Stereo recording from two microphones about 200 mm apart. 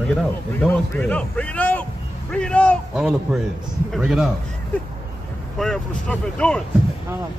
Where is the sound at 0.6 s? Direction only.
5° left (ahead or behind).